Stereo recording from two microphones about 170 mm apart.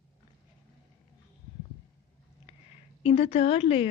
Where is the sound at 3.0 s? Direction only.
35° left (ahead or behind).